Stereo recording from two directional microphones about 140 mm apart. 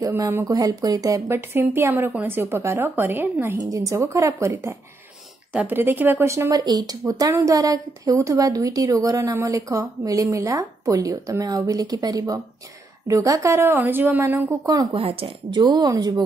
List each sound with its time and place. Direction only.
0.0 s speech: 20° right (ahead or behind)
15.0 s speech: 40° right (ahead or behind)